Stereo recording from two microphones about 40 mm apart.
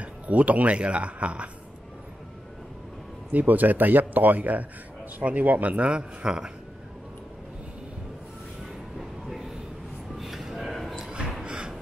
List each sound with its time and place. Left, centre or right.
0.0 s speech: right
3.3 s speech: right
6.2 s speech: centre
9.2 s a sound: centre
10.7 s basketball bounce: centre
11.4 s a sound: right